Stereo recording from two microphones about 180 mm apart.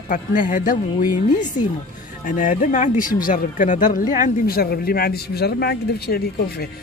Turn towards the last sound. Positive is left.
turn(degrees=60)  # may be behind; listen again after turning